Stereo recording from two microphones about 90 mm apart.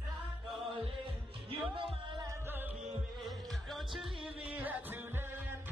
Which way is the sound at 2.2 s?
25° right (ahead or behind).